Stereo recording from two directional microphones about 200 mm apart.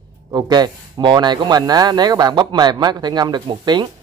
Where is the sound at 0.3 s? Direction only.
20° right (ahead or behind).